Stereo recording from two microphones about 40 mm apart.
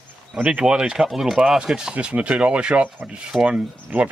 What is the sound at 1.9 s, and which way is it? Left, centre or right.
Speech, right.